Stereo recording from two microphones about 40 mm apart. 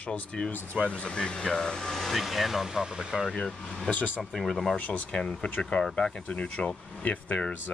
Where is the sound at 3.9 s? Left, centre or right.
Left.